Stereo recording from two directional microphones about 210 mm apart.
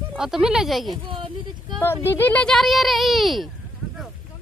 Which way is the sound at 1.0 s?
25° right (ahead or behind).